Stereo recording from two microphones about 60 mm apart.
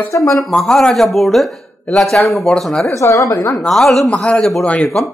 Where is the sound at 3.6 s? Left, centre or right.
Centre.